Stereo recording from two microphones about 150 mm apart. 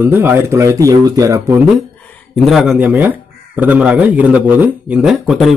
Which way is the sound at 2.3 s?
Centre (ahead or behind).